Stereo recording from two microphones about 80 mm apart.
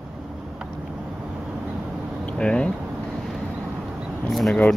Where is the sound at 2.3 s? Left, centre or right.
Centre.